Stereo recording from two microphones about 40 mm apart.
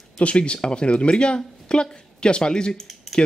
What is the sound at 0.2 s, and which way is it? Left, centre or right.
Speech, left.